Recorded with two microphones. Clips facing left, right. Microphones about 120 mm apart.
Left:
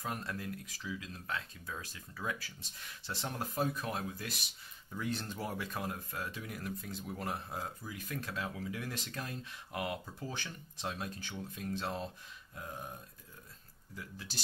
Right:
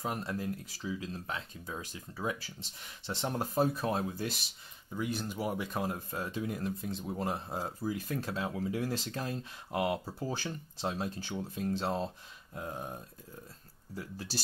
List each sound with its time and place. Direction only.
0.0 s speech: 20° right (ahead or behind)
4.9 s speech: 15° right (ahead or behind); by 14.4 s 35° right (ahead or behind)